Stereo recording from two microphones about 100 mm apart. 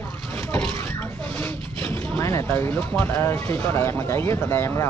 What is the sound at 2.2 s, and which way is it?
Speech, 25° left (ahead or behind).